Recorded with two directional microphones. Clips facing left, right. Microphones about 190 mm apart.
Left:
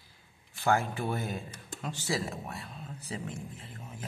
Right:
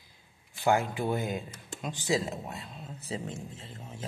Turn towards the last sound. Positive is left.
turn(degrees=-25)  # may be behind; listen again after turning